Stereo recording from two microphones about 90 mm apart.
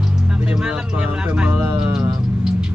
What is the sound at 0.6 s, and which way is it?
Speech, 10° right (ahead or behind).